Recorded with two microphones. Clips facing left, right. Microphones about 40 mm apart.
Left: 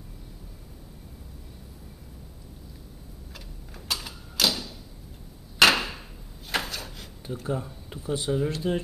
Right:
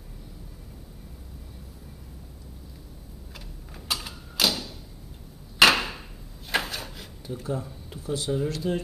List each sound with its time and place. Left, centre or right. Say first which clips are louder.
3.3 s tick-tock: right 1 dB; centre
5.6 s hammer: right 1 dB; centre
7.3 s speech: even; left
7.6 s speech: left 1 dB; centre